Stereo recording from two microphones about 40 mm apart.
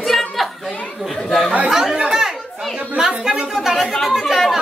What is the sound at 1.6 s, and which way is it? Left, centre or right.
Chatter, centre.